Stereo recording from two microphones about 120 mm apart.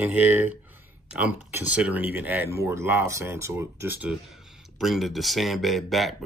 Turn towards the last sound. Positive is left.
turn(degrees=0)  # may be behind; listen again after turning